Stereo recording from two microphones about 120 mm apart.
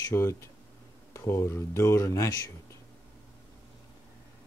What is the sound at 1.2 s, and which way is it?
Speech, 25° left (ahead or behind).